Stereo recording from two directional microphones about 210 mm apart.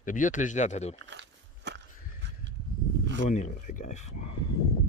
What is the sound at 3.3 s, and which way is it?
Speech, 35° left (ahead or behind).